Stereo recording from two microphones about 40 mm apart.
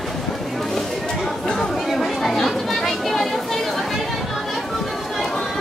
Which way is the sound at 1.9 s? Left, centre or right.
Centre.